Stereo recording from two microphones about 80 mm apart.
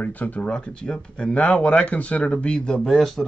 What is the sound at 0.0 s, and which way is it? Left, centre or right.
Speech, centre.